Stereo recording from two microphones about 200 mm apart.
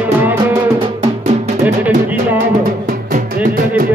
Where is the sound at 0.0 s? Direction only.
10° right (ahead or behind).